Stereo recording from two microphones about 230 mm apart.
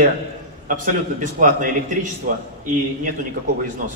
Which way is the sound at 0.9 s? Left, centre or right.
Right.